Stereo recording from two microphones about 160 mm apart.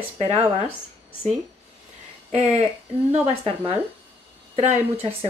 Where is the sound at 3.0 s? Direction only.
40° right (ahead or behind).